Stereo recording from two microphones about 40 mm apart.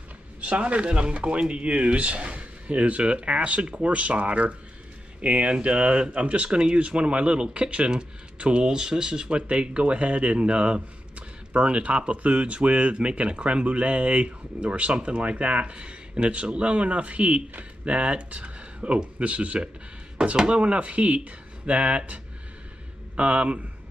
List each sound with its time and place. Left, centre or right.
0.4 s speech: right